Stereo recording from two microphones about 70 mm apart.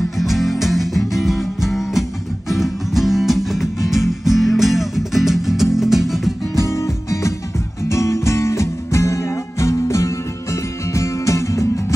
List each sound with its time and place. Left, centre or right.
0.2 s music: centre
6.5 s music: left